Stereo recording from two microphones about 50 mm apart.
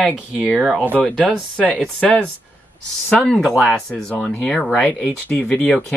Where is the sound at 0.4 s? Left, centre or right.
Right.